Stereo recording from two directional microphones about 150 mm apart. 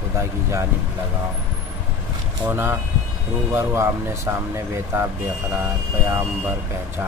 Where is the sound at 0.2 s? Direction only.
20° right (ahead or behind).